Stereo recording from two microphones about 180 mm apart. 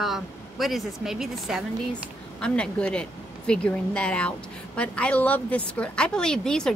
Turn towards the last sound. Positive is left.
turn(degrees=5)  # may be behind; listen again after turning